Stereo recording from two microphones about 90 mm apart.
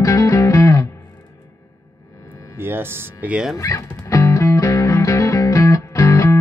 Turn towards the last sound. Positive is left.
turn(degrees=35)  # may be behind; listen again after turning